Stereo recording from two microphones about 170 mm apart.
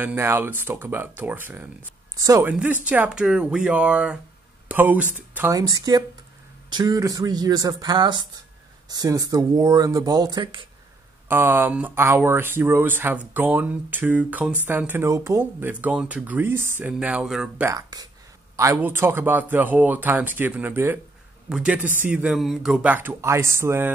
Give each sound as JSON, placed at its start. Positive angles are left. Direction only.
{"t": 0.0, "sound": "speech", "side_deg": -10}
{"t": 2.1, "sound": "a woman's voice", "side_deg": -20}
{"t": 2.4, "sound": "speech", "side_deg": -10}
{"t": 5.6, "sound": "speech", "side_deg": -20}
{"t": 11.2, "sound": "speech", "side_deg": -10}
{"t": 17.6, "sound": "speech", "side_deg": -20}